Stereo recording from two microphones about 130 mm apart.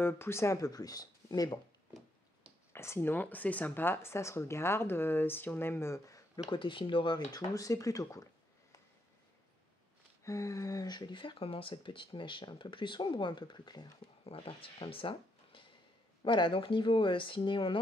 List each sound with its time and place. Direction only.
0.0 s speech: 20° left (ahead or behind)
2.7 s speech: 20° left (ahead or behind)
6.5 s speech: 40° left (ahead or behind)
10.2 s speech: 25° left (ahead or behind)
14.2 s speech: 45° left (ahead or behind)